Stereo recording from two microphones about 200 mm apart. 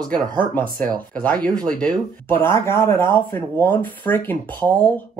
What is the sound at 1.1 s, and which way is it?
Speech, 5° left (ahead or behind).